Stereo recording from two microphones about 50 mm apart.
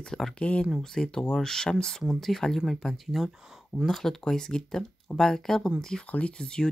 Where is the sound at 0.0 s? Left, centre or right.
Centre.